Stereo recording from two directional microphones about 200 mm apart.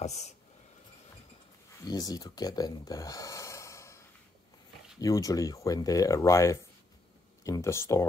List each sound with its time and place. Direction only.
0.0 s speech: 35° left (ahead or behind)
1.9 s speech: 20° left (ahead or behind)
5.0 s speech: 15° left (ahead or behind)